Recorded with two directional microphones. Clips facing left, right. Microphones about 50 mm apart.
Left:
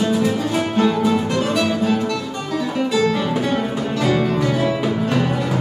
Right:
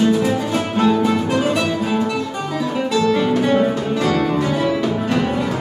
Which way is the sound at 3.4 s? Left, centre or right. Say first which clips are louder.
Right 4 dB; centre.